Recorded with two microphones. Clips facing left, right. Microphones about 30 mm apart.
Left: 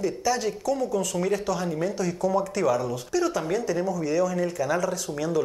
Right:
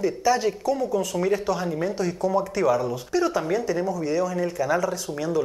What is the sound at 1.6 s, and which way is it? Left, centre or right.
Speech, centre.